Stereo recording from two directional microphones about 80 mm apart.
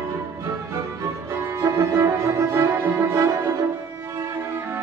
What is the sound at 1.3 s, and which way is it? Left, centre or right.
Music, right.